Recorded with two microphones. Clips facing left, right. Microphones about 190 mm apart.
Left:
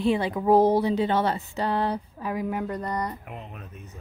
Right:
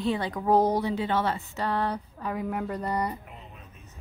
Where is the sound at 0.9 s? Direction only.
20° left (ahead or behind); by 3.2 s 10° right (ahead or behind).